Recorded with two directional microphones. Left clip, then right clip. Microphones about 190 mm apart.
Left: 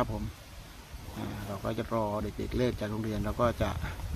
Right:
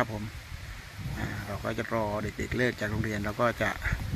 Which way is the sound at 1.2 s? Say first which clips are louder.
Right 2 dB; 5° right (ahead or behind).